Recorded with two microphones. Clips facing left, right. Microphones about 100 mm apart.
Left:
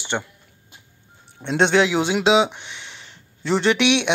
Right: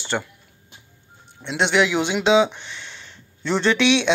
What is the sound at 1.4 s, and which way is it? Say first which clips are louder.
A man's voice: left 2 dB; 40° left (ahead or behind).